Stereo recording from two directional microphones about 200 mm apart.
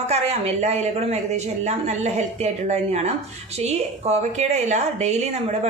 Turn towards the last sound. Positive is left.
turn(degrees=-35)  # may be behind; listen again after turning